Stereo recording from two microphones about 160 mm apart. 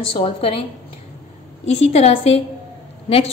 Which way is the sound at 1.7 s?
40° left (ahead or behind).